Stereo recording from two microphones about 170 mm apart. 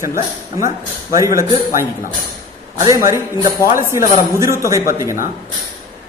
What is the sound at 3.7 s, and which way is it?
Speech, 15° right (ahead or behind).